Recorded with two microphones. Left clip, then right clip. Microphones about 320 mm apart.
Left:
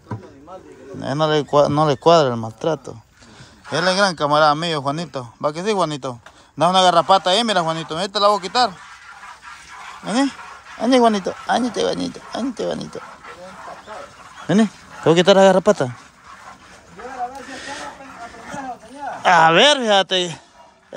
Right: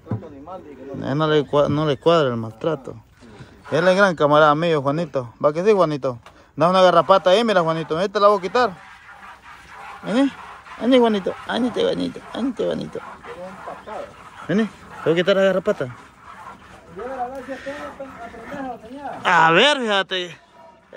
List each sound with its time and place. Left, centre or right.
1.0 s a man's voice: centre
10.0 s a man's voice: centre
14.5 s speech: centre
17.5 s a sound: centre
19.2 s a man's voice: centre